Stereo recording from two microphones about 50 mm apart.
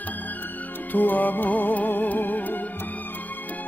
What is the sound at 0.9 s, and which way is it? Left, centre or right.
Music, left.